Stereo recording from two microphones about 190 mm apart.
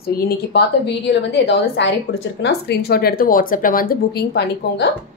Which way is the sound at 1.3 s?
65° left (ahead or behind).